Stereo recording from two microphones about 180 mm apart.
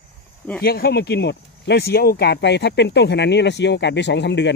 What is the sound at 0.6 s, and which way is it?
Speech, 60° left (ahead or behind).